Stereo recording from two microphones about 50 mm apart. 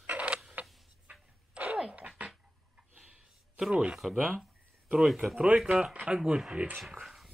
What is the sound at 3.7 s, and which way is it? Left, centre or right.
Speech, right.